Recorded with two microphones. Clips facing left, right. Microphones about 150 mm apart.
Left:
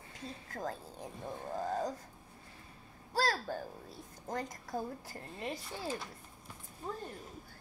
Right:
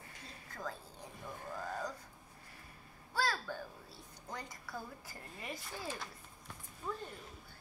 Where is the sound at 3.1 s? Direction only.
40° left (ahead or behind).